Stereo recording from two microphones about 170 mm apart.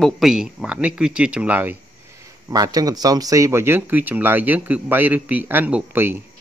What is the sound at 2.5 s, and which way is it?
A man's voice, 20° right (ahead or behind).